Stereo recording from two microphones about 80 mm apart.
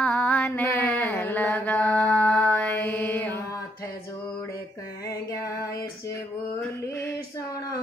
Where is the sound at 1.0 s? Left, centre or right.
Left.